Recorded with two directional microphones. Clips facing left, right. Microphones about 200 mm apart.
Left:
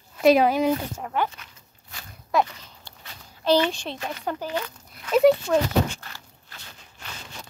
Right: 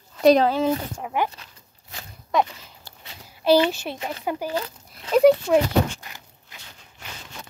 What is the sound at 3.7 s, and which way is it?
Speech, 5° right (ahead or behind).